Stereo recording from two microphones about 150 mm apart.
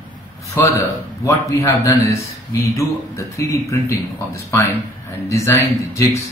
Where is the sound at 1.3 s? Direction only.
20° left (ahead or behind).